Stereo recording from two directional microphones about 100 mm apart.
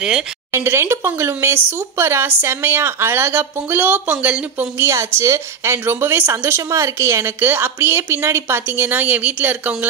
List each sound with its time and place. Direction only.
0.5 s speech: 25° right (ahead or behind)